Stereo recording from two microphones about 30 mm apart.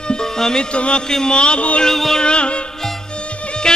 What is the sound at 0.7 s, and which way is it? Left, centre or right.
Music, left.